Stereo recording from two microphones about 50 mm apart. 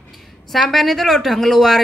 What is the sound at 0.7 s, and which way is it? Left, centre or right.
Speech, centre.